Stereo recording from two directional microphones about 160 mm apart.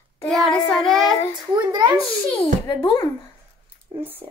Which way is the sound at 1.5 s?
25° right (ahead or behind).